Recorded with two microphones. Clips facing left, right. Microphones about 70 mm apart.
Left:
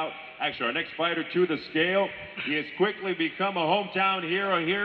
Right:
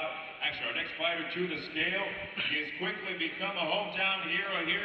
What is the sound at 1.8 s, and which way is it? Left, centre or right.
A man's voice, left.